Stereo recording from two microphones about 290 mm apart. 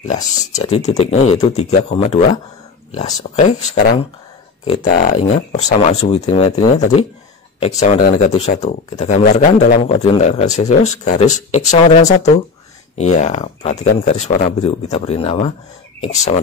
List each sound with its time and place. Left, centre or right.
0.1 s speech: left
7.6 s speech: left